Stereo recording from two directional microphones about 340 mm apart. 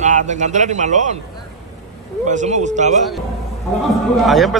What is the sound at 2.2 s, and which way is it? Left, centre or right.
Speech, right.